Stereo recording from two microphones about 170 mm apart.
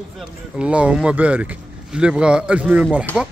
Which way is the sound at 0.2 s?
5° right (ahead or behind).